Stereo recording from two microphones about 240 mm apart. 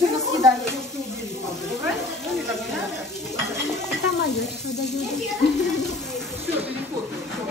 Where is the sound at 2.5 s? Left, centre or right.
Centre.